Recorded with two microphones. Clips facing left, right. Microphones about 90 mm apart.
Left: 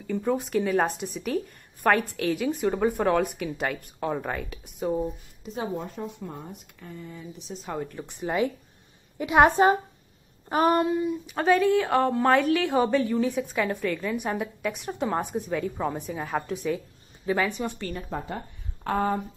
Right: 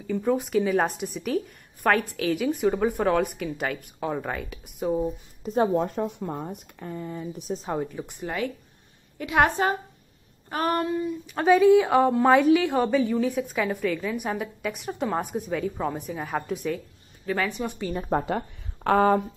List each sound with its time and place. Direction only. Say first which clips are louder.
0.0 s a woman's voice: right 2 dB; centre (ahead or behind)
5.4 s speech: right 9 dB; 50° right (ahead or behind)
7.7 s a woman's voice: right 1 dB; 10° right (ahead or behind)
8.2 s a woman's voice: left 4 dB; 15° left (ahead or behind)
11.4 s a woman's voice: right 4 dB; 10° right (ahead or behind)
18.9 s speech: right 6 dB; 90° right